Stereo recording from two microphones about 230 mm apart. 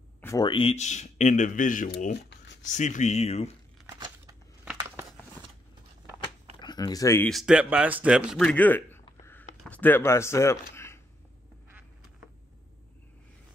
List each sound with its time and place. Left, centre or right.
0.2 s a man's voice: centre; by 2.1 s left
2.2 s a sound: left
2.6 s speech: left
3.8 s crushing: centre
6.6 s speech: centre
9.2 s a sound: centre
9.7 s speech: centre